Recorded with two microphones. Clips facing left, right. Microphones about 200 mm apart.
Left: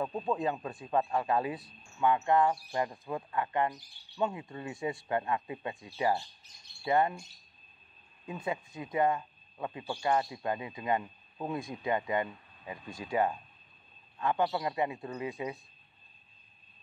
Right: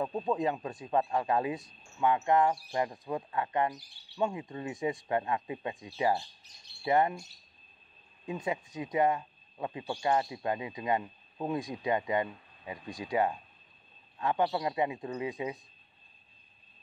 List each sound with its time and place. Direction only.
0.4 s speech: 20° right (ahead or behind)
8.7 s speech: 20° right (ahead or behind)